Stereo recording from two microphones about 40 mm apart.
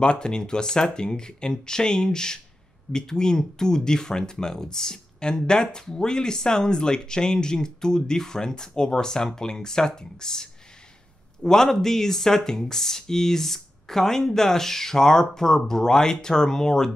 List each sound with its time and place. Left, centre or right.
0.0 s speech: left